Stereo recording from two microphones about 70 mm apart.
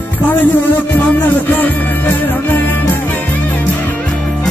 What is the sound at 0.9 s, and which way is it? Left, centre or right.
Music, left.